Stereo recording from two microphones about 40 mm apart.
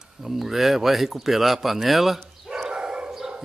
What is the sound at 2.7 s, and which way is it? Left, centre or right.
Dog, right.